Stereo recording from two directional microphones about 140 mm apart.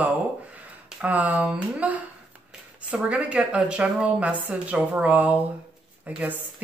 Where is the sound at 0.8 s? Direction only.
10° right (ahead or behind).